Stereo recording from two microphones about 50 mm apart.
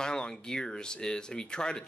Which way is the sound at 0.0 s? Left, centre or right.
Centre.